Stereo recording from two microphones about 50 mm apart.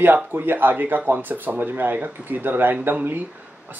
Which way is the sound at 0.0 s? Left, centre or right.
Right.